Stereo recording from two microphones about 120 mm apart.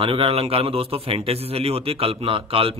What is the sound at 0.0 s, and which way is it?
Speech, 50° right (ahead or behind).